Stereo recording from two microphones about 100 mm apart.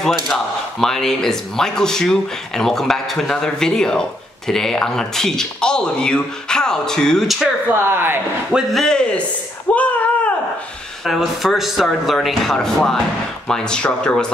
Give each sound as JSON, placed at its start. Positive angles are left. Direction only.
{"t": 0.0, "sound": "speech", "side_deg": 5}
{"t": 7.8, "sound": "speech", "side_deg": -25}
{"t": 8.5, "sound": "a man's voice", "side_deg": -5}
{"t": 8.8, "sound": "speech", "side_deg": 10}
{"t": 9.8, "sound": "a sound", "side_deg": 15}
{"t": 11.1, "sound": "speech", "side_deg": 0}